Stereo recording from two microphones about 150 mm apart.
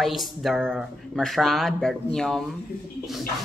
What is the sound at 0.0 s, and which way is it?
Speech, centre (ahead or behind).